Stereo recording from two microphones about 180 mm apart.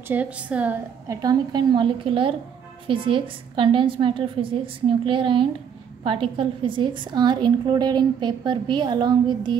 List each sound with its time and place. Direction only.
0.1 s a woman's voice: 10° right (ahead or behind)
1.0 s a woman's voice: 20° right (ahead or behind)